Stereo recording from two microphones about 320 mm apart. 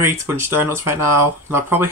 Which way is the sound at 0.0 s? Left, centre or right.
Centre.